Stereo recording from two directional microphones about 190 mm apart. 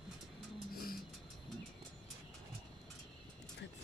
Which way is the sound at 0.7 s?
50° left (ahead or behind).